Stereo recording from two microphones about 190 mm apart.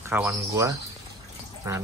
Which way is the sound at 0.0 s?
10° right (ahead or behind).